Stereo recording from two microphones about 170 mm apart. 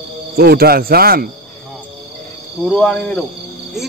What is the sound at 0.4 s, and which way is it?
Speech, 65° right (ahead or behind).